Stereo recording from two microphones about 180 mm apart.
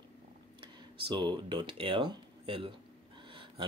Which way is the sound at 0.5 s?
30° right (ahead or behind).